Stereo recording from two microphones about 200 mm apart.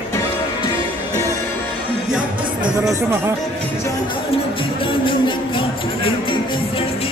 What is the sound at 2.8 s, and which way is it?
Speech, 15° right (ahead or behind).